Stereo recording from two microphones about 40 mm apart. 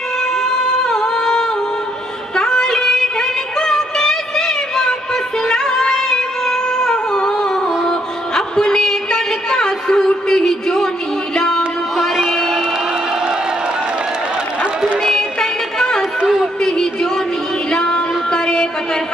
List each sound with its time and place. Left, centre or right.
0.4 s singing: centre
2.3 s music: centre
8.4 s a sound: centre
11.3 s music: centre
12.3 s music: centre
15.1 s music: centre
16.6 s a sound: centre
17.6 s music: centre